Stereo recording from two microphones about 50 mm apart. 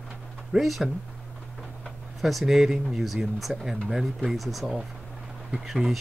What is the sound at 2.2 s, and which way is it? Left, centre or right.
Speech, centre.